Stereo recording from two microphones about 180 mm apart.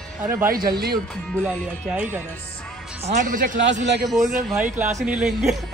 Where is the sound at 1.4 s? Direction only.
5° right (ahead or behind).